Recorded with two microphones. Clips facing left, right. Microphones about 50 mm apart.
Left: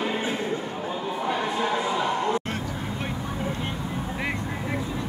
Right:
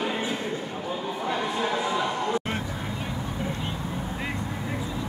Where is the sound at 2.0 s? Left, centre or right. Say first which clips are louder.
Left 2 dB; centre.